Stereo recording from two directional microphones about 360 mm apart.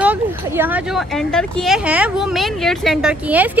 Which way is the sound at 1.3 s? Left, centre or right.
Centre.